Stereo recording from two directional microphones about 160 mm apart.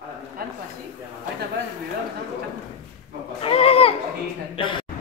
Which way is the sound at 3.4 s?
35° left (ahead or behind).